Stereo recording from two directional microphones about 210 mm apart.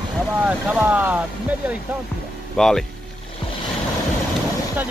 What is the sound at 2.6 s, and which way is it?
Speech, centre (ahead or behind).